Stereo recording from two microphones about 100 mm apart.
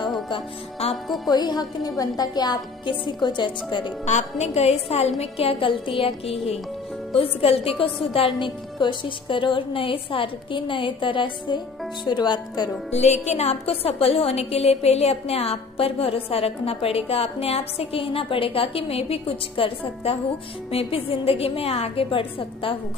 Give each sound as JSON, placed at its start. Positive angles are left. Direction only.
{"t": 1.0, "sound": "speech", "side_deg": 0}
{"t": 1.3, "sound": "a woman's voice", "side_deg": 45}
{"t": 4.4, "sound": "a woman's voice", "side_deg": 90}
{"t": 5.2, "sound": "a woman's voice", "side_deg": 75}
{"t": 8.4, "sound": "a woman's voice", "side_deg": 50}
{"t": 12.9, "sound": "a woman's voice", "side_deg": 90}